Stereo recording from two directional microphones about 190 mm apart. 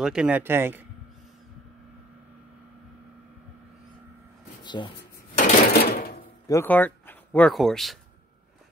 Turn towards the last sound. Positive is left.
turn(degrees=0)  # may be behind; listen again after turning